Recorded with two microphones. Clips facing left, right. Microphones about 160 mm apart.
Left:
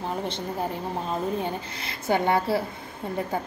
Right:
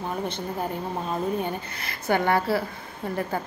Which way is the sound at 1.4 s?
25° left (ahead or behind).